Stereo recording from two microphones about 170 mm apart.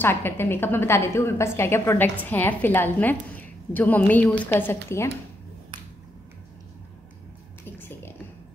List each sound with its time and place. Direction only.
0.0 s a woman's voice: 10° left (ahead or behind)